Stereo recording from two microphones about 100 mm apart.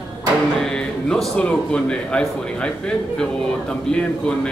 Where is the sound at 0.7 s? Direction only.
5° left (ahead or behind).